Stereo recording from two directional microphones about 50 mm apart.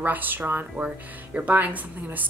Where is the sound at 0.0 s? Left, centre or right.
Right.